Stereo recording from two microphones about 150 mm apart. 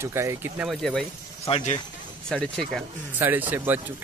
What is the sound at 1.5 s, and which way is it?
Speech, 50° left (ahead or behind).